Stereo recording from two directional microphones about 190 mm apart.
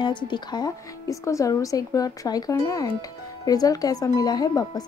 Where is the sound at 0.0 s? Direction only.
25° left (ahead or behind).